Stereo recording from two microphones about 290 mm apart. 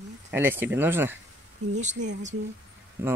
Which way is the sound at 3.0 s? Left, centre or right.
Centre.